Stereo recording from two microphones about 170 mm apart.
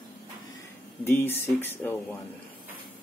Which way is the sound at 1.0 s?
15° left (ahead or behind).